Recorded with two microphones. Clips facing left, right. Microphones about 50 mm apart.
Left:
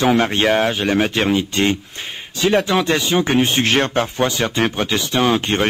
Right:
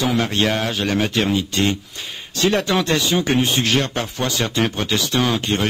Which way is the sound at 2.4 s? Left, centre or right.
Centre.